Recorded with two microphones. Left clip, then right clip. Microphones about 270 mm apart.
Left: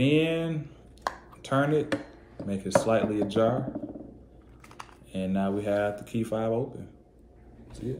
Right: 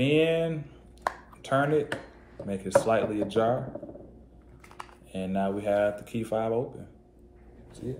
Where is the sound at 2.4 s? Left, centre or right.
Centre.